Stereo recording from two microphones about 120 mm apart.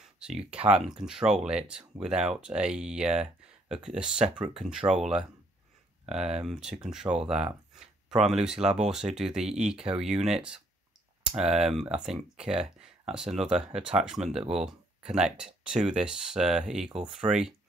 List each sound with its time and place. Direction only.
0.7 s speech: 5° right (ahead or behind)
6.1 s speech: 5° right (ahead or behind)